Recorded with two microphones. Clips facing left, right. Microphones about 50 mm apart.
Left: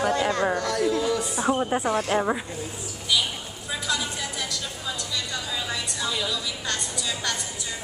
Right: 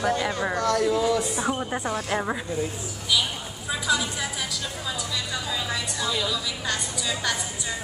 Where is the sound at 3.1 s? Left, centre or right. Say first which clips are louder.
Even; centre.